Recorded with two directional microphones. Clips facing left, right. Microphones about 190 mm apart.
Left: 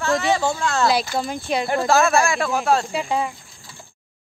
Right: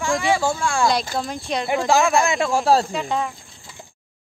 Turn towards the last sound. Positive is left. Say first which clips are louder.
# left 1 dB
turn(degrees=5)  # may be behind; listen again after turning